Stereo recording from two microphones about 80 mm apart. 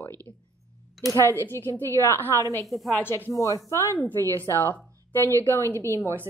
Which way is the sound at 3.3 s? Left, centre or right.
Left.